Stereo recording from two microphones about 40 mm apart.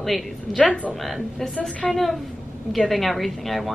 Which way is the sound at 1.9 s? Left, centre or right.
Centre.